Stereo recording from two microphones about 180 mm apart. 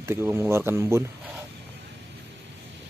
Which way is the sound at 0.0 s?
15° right (ahead or behind).